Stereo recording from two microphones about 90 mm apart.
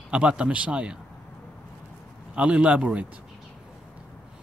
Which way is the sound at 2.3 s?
10° right (ahead or behind).